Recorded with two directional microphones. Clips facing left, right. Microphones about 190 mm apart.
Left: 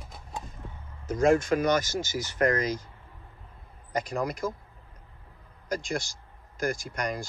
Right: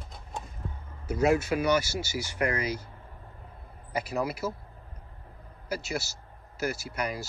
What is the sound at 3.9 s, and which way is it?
Speech, 5° right (ahead or behind).